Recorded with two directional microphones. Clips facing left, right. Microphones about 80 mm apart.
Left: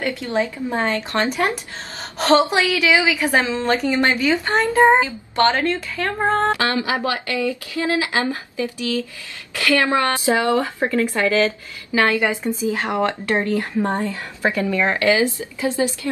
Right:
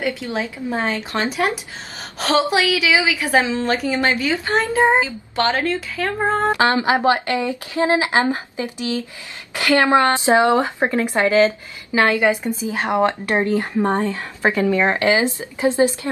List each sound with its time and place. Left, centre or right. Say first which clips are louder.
0.0 s speech: left 2 dB; centre
6.4 s a woman's voice: right 3 dB; right